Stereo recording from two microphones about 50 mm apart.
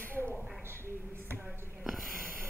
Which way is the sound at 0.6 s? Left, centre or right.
Right.